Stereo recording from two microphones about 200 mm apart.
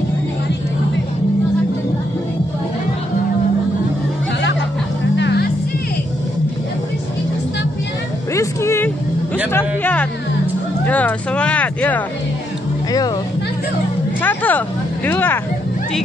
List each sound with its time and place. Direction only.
5.1 s music: 55° left (ahead or behind)
8.4 s music: 15° left (ahead or behind)
10.9 s speech: 5° left (ahead or behind)
14.2 s hubbub: 10° left (ahead or behind)
15.0 s speech: 10° left (ahead or behind)